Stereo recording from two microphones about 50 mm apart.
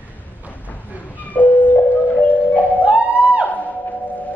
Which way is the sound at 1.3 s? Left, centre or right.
Left.